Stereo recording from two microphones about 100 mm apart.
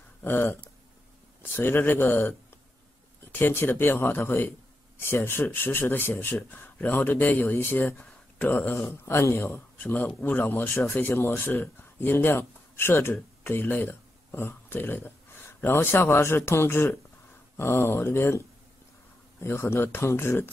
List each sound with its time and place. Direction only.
0.2 s speech: 20° left (ahead or behind)
19.4 s speech: 25° left (ahead or behind)